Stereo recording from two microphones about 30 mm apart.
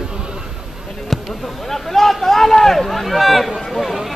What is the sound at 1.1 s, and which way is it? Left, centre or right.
Speech, centre.